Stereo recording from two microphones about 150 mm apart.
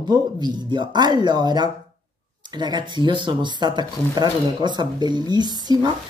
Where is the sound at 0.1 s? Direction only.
30° right (ahead or behind).